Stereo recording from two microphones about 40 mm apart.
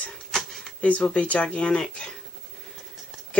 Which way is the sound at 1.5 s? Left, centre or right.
Centre.